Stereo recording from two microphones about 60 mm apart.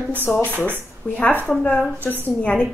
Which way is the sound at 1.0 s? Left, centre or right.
Left.